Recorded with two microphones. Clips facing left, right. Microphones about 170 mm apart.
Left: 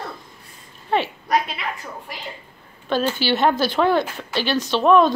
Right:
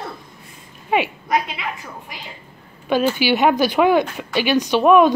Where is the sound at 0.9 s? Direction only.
15° right (ahead or behind).